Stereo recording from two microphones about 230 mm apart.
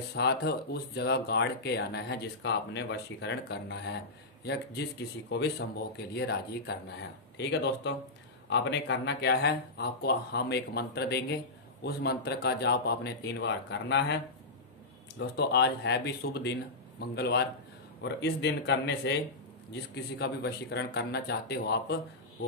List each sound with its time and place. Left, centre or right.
0.1 s speech: left
5.3 s speech: left
15.1 s speech: left